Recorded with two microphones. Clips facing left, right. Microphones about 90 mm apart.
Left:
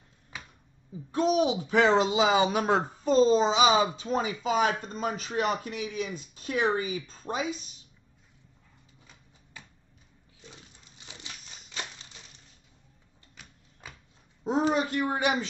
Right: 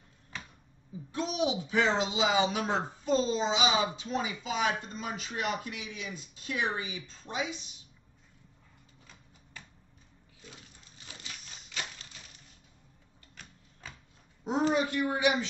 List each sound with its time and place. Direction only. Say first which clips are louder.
1.1 s speech: left 6 dB; 45° left (ahead or behind)
11.0 s crumpling: left 1 dB; 20° left (ahead or behind)
13.4 s a sound: even; 10° left (ahead or behind)
14.7 s speech: left 2 dB; 45° left (ahead or behind)